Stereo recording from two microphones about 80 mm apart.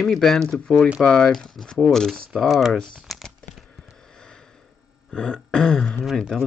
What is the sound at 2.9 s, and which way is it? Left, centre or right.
Crumpling, centre.